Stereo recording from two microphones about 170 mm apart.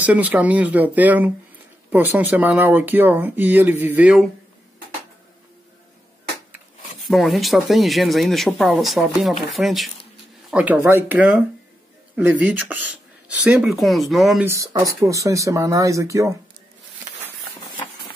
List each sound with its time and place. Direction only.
0.0 s speech: 10° right (ahead or behind)
7.1 s speech: centre (ahead or behind)
14.4 s speech: 15° right (ahead or behind)